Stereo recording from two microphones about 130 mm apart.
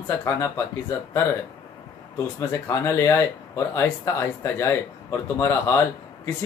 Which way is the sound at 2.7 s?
20° left (ahead or behind).